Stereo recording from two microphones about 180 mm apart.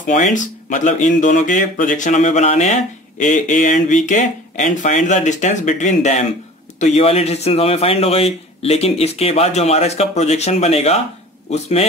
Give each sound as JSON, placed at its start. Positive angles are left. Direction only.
{"t": 0.0, "sound": "speech", "side_deg": 45}